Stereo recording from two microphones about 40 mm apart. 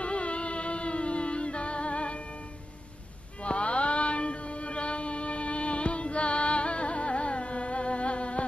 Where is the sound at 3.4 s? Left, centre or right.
Left.